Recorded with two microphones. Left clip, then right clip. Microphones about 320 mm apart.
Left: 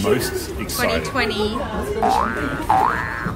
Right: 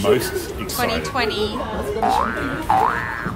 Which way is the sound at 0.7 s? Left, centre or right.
Centre.